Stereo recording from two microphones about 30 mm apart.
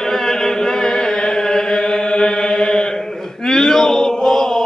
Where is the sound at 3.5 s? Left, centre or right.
Centre.